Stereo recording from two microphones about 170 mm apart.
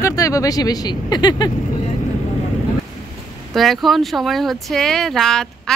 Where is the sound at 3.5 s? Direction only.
Centre (ahead or behind).